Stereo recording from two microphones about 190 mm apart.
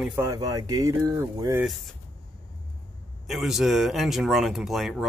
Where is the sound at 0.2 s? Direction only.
15° right (ahead or behind).